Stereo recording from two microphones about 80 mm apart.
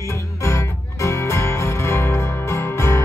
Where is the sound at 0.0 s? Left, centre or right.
Left.